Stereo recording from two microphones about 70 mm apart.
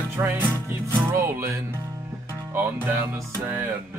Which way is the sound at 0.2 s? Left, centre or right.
Right.